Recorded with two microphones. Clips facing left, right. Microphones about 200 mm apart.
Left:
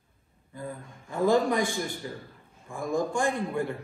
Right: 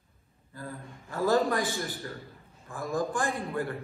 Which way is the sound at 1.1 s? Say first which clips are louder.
Left 2 dB; 15° left (ahead or behind).